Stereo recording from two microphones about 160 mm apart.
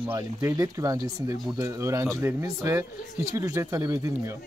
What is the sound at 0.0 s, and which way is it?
Speech, 15° right (ahead or behind).